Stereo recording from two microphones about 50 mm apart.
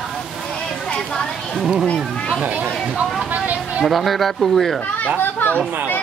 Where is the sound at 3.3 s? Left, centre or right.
Right.